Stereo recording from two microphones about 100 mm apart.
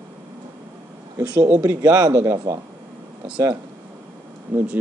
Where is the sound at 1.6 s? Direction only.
35° right (ahead or behind).